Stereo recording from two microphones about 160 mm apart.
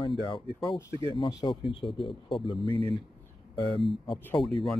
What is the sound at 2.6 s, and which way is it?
Speech, 35° right (ahead or behind).